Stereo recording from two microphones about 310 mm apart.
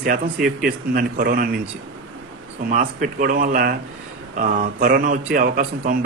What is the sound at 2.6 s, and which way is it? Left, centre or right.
Speech, right.